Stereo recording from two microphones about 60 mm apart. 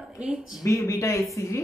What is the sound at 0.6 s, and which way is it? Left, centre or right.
Speech, left.